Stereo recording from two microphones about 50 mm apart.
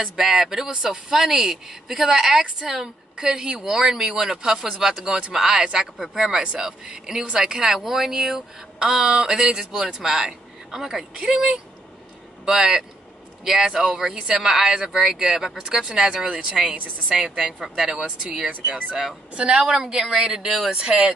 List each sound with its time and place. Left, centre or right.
0.0 s a woman's voice: centre
18.0 s speech: right